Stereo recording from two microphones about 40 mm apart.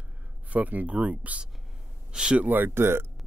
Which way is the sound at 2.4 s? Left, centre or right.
Right.